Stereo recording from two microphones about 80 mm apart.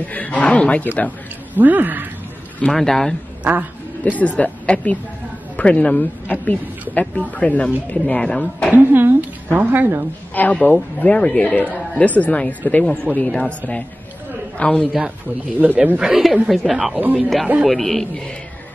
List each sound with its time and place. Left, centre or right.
0.1 s speech: centre
1.5 s a woman's voice: right
2.6 s speech: centre
4.0 s speech: centre
8.7 s a woman's voice: right
10.3 s speech: left
15.6 s a woman's voice: right
16.0 s a man's voice: centre
17.6 s a man's voice: centre